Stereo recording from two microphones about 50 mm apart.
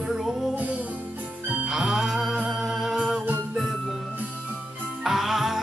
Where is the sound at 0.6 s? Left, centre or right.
Right.